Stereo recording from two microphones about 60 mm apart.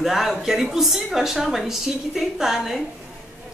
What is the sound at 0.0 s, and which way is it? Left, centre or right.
Speech, centre.